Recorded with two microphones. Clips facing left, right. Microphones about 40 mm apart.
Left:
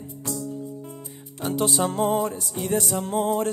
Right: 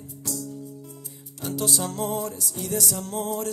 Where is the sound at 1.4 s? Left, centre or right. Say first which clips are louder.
Left 4 dB; left.